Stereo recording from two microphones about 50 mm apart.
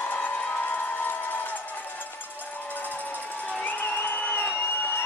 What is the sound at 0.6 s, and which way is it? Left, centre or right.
Crowd, left.